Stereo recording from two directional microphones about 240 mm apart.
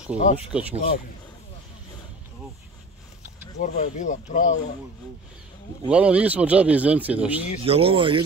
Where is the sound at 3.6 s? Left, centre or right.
Left.